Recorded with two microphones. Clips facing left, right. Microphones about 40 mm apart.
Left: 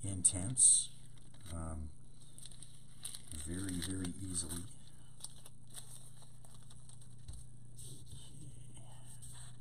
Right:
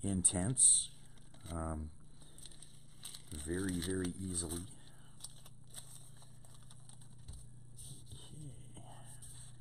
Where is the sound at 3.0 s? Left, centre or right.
Centre.